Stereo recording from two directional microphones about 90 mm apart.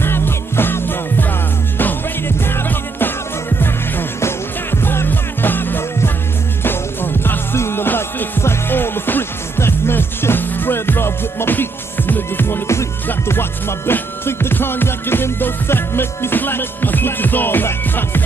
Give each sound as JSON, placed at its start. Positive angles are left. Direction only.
{"t": 0.0, "sound": "music", "side_deg": 25}